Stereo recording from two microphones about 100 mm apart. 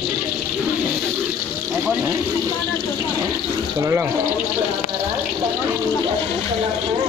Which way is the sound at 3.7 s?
25° right (ahead or behind).